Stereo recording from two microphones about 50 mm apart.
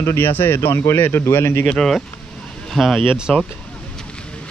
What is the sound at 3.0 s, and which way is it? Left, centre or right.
Speech, centre.